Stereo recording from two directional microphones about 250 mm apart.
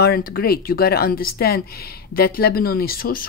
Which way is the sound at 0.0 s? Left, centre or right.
Left.